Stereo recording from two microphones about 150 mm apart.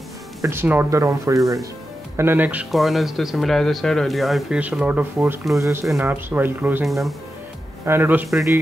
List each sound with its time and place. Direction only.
0.4 s speech: 15° right (ahead or behind)
2.7 s speech: centre (ahead or behind)
6.9 s speech: centre (ahead or behind)
7.8 s speech: 15° right (ahead or behind)